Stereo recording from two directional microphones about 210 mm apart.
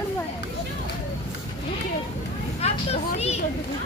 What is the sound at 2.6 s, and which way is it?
Speech, 30° left (ahead or behind).